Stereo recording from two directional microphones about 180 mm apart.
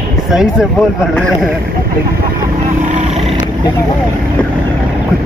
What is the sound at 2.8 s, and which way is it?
Vehicle, 45° right (ahead or behind).